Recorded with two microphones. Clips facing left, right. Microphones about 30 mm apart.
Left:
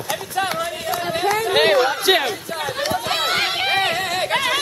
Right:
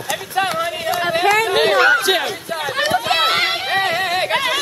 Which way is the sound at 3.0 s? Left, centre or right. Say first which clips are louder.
Right 2 dB; right.